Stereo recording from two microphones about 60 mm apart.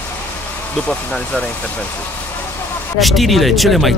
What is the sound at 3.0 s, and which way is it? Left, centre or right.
Speech, centre.